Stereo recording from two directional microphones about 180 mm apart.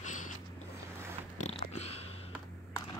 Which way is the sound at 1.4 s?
35° left (ahead or behind).